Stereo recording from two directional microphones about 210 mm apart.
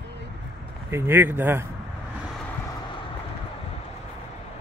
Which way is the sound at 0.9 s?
10° right (ahead or behind).